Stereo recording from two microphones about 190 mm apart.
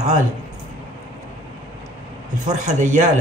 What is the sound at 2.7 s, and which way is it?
Speech, 40° right (ahead or behind).